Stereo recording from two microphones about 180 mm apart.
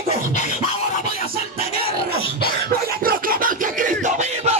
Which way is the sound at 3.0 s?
50° right (ahead or behind).